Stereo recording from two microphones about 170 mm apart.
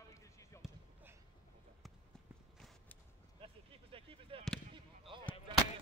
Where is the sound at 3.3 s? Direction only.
35° right (ahead or behind).